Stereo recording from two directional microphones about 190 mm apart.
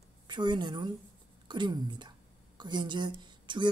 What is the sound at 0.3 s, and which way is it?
A woman's voice, 25° right (ahead or behind).